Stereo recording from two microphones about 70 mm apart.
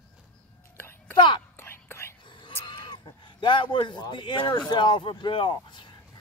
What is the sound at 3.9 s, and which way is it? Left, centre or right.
Speech, left.